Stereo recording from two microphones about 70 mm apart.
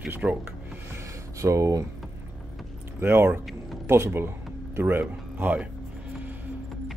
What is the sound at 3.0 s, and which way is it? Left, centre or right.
Speech, right.